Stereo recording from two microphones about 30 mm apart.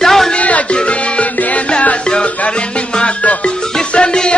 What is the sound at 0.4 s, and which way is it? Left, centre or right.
Music, left.